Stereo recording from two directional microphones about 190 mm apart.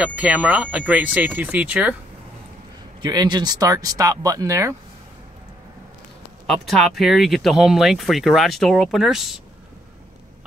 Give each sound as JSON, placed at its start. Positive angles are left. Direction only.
{"t": 0.0, "sound": "speech", "side_deg": -5}
{"t": 3.0, "sound": "speech", "side_deg": -20}
{"t": 6.4, "sound": "speech", "side_deg": 0}